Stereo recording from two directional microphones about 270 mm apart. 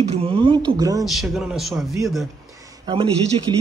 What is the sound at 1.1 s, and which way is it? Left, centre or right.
Speech, centre.